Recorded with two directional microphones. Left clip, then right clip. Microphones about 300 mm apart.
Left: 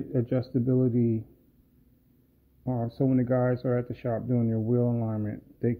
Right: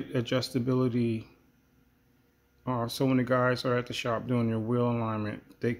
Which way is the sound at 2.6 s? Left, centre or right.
Centre.